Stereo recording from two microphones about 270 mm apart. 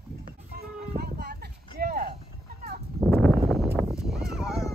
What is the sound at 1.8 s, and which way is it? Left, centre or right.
Clip-clop, right.